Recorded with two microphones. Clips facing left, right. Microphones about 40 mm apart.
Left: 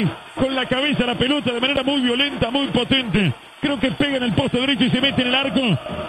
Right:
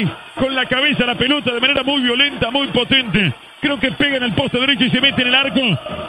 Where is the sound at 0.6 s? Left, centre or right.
Right.